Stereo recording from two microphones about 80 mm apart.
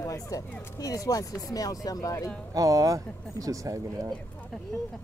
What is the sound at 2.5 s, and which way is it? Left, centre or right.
Speech, right.